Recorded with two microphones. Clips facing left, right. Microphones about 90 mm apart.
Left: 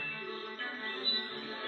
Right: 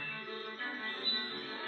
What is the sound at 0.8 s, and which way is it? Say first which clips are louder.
Music: left 1 dB; centre (ahead or behind).